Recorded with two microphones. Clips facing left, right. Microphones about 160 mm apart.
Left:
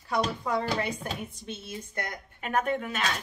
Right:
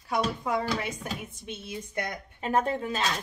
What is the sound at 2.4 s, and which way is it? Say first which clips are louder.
Speech: right 2 dB; 30° right (ahead or behind).